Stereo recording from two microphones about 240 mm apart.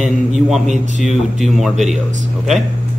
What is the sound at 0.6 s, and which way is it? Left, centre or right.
Speech, right.